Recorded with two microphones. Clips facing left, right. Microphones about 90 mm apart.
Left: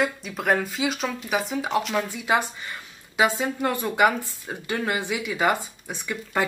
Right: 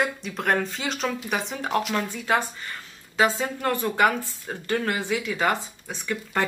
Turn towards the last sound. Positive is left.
turn(degrees=15)  # may be behind; listen again after turning